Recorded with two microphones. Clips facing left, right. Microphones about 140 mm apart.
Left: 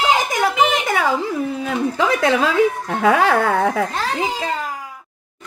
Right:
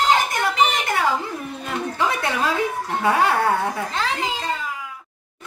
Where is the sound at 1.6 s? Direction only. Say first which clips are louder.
Left 2 dB; 90° left.